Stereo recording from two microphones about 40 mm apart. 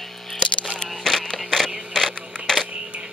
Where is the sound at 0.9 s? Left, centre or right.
Centre.